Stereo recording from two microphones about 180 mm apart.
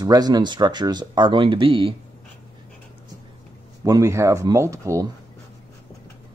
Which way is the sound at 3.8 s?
20° right (ahead or behind).